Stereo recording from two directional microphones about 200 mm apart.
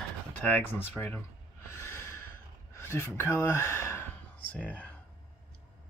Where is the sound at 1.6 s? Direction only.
10° left (ahead or behind).